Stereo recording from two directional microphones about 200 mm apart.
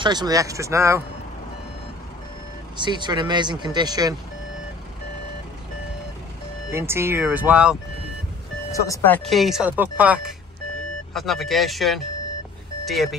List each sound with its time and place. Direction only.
0.0 s speech: 20° right (ahead or behind)
2.8 s speech: 20° right (ahead or behind)
6.7 s speech: 10° right (ahead or behind)
8.7 s speech: 15° left (ahead or behind); by 13.1 s centre (ahead or behind)